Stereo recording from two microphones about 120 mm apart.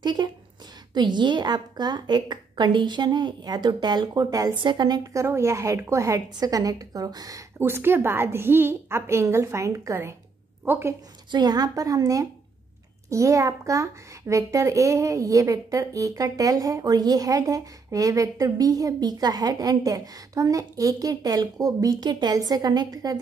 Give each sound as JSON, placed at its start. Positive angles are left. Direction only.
{"t": 0.0, "sound": "a woman's voice", "side_deg": -35}
{"t": 7.5, "sound": "a child's voice", "side_deg": -20}
{"t": 11.3, "sound": "a woman's voice", "side_deg": -35}